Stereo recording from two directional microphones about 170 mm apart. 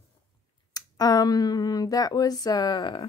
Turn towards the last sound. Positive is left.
turn(degrees=25)  # may be behind; listen again after turning